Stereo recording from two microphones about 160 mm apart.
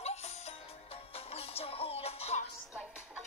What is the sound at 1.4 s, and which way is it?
Music, 40° left (ahead or behind).